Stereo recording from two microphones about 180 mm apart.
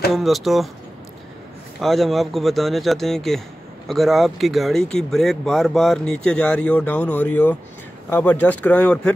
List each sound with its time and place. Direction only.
0.1 s speech: centre (ahead or behind)
1.8 s speech: centre (ahead or behind)